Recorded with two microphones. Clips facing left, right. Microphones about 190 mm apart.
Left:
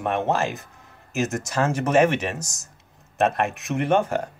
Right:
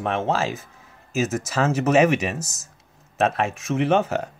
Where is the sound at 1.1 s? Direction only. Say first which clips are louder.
Right 1 dB; centre (ahead or behind).